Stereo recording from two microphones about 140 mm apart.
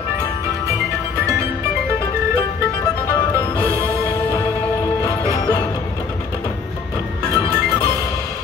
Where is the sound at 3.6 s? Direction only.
20° right (ahead or behind).